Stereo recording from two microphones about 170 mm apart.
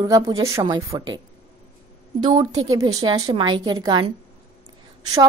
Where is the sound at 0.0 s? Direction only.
20° right (ahead or behind).